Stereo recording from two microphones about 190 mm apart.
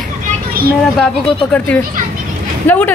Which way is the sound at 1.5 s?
5° left (ahead or behind).